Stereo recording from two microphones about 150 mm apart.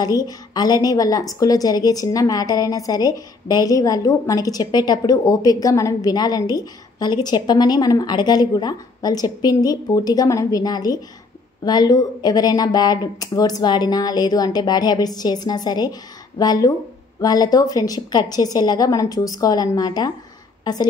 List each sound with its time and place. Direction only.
0.0 s a woman's voice: 25° left (ahead or behind)